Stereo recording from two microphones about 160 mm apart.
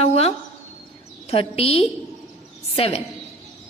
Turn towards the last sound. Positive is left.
turn(degrees=35)  # may be behind; listen again after turning